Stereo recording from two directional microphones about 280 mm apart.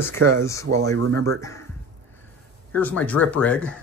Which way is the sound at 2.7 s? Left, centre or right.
Centre.